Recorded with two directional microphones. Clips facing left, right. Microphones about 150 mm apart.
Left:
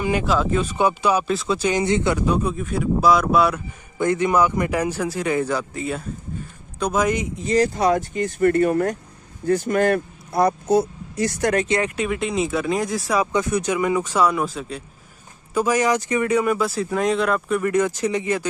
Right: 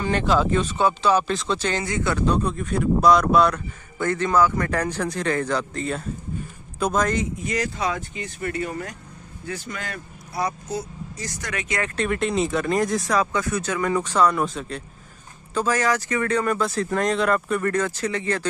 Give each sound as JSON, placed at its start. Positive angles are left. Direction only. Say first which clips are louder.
{"t": 0.0, "sound": "speech", "louder": "even", "side_deg": 5}
{"t": 1.9, "sound": "speech", "louder": "left 5 dB", "side_deg": 25}
{"t": 2.1, "sound": "speech", "louder": "left 1 dB", "side_deg": 10}
{"t": 4.0, "sound": "speech", "louder": "left 2 dB", "side_deg": 15}
{"t": 7.3, "sound": "speech", "louder": "left 7 dB", "side_deg": 30}
{"t": 11.5, "sound": "speech", "louder": "left 8 dB", "side_deg": 30}
{"t": 12.0, "sound": "speech", "louder": "even", "side_deg": 0}
{"t": 15.5, "sound": "speech", "louder": "left 3 dB", "side_deg": 15}